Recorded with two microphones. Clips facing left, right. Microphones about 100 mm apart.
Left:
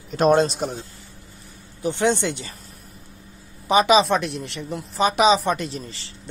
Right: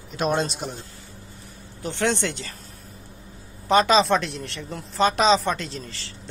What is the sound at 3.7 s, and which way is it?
Speech, 5° left (ahead or behind).